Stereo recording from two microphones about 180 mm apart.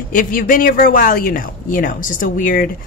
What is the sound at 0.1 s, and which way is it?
Speech, 50° left (ahead or behind).